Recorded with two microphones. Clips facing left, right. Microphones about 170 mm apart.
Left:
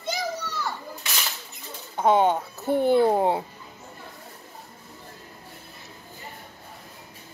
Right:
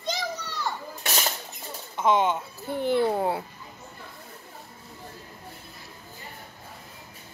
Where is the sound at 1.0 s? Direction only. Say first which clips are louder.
Right 7 dB; 45° right (ahead or behind).